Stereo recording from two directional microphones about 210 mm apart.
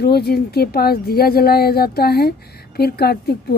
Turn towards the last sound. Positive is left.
turn(degrees=50)  # may be behind; listen again after turning